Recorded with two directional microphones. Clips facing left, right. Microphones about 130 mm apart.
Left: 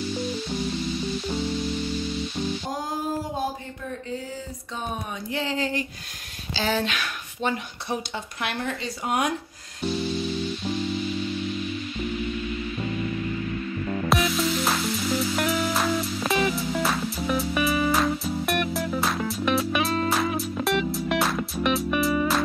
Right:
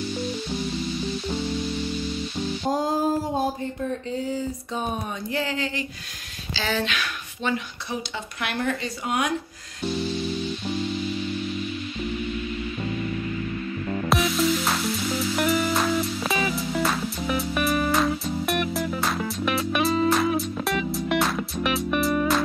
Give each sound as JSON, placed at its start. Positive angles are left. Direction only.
{"t": 5.3, "sound": "a sound", "side_deg": 25}
{"t": 5.6, "sound": "speech", "side_deg": 45}
{"t": 13.8, "sound": "music", "side_deg": 0}